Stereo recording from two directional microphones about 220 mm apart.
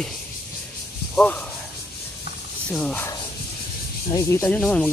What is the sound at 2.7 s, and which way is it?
Speech, 5° left (ahead or behind).